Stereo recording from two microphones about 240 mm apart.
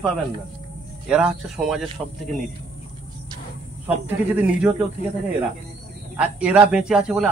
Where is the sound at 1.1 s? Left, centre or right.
Centre.